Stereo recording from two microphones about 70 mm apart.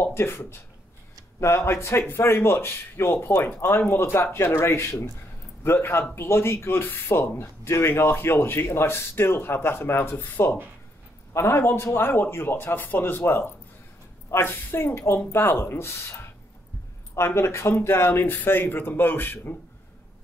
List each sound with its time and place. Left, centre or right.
0.0 s speech: left